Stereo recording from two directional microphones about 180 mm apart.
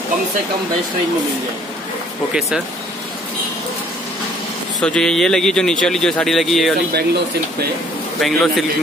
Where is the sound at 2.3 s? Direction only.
Centre (ahead or behind).